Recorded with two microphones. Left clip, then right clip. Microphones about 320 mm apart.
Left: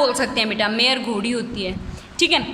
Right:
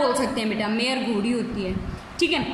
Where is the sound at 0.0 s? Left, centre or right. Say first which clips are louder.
Left 4 dB; left.